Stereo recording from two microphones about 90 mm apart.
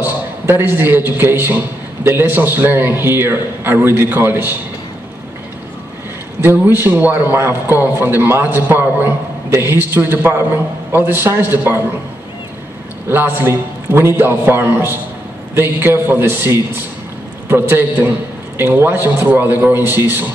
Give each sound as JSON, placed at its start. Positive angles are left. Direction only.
{"t": 0.0, "sound": "a man's voice", "side_deg": -25}
{"t": 6.4, "sound": "a man's voice", "side_deg": -20}
{"t": 13.1, "sound": "a man's voice", "side_deg": -25}